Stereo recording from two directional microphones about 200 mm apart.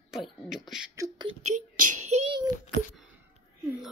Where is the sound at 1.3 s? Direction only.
35° right (ahead or behind).